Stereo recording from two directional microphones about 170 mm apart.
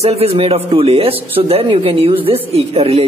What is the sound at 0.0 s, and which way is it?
Speech, 35° right (ahead or behind).